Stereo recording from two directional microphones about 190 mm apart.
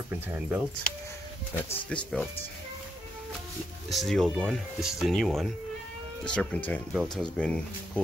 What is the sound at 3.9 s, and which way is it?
Speech, centre (ahead or behind).